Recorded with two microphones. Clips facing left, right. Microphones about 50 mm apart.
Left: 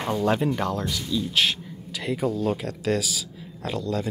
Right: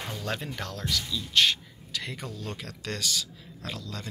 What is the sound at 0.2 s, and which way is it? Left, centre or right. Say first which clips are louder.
Speech: left 12 dB; centre.